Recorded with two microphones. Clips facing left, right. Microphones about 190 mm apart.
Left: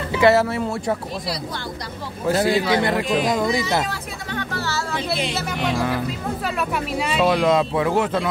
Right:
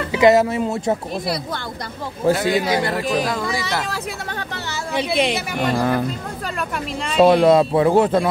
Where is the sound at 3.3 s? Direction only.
20° left (ahead or behind).